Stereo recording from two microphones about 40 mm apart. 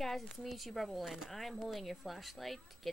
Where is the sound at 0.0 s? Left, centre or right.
Centre.